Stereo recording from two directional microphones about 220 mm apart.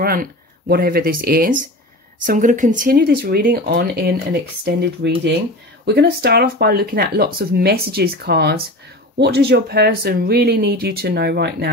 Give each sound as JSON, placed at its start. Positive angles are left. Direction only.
{"t": 0.0, "sound": "speech", "side_deg": -45}